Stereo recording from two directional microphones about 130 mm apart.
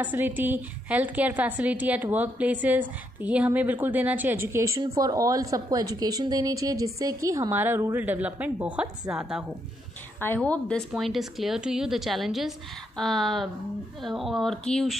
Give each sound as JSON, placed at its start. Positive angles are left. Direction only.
{"t": 0.0, "sound": "a woman's voice", "side_deg": -15}
{"t": 10.2, "sound": "a woman's voice", "side_deg": 15}
{"t": 10.9, "sound": "a woman's voice", "side_deg": 0}